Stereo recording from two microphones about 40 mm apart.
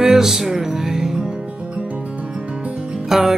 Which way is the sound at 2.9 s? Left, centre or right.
Centre.